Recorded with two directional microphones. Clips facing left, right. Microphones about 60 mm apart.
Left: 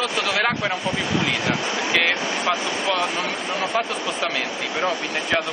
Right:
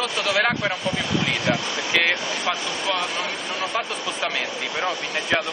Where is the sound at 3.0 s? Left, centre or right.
Left.